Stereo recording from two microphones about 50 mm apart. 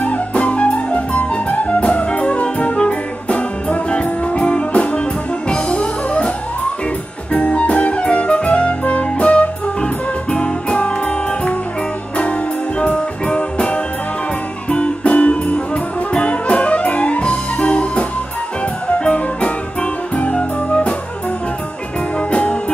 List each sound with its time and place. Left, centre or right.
0.0 s music: left
7.3 s music: left
12.2 s music: left
18.9 s music: left
22.3 s music: left